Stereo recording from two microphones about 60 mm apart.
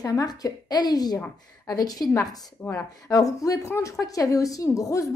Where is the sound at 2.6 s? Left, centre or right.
Left.